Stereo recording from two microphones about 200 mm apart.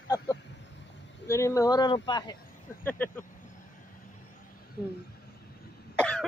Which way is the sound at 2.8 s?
10° left (ahead or behind).